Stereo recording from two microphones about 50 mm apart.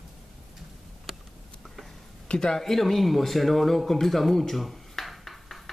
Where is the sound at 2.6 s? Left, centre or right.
Centre.